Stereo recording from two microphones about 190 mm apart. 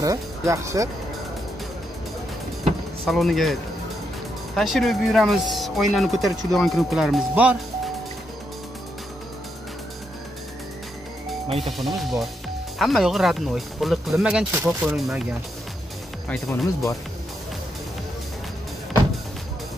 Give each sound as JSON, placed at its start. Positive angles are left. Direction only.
{"t": 0.0, "sound": "speech", "side_deg": -15}
{"t": 3.1, "sound": "speech", "side_deg": 0}
{"t": 4.6, "sound": "speech", "side_deg": 0}
{"t": 11.6, "sound": "speech", "side_deg": 0}
{"t": 16.3, "sound": "speech", "side_deg": 10}